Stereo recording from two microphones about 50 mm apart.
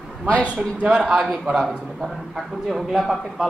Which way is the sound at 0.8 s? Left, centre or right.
Right.